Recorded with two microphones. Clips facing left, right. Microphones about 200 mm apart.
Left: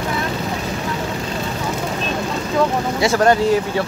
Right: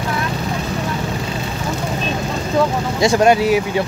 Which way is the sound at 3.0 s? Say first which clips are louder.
Right 2 dB; 15° right (ahead or behind).